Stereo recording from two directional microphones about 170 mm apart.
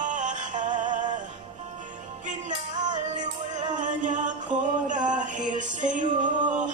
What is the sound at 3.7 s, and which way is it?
Music, 50° right (ahead or behind).